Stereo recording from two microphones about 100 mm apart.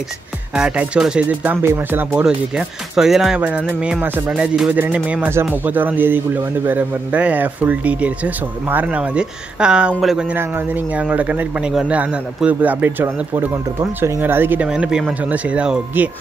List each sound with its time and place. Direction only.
0.6 s speech: 10° right (ahead or behind)
2.2 s speech: 5° right (ahead or behind)
4.6 s speech: 15° right (ahead or behind)
10.3 s speech: 15° right (ahead or behind)
14.7 s speech: 5° right (ahead or behind)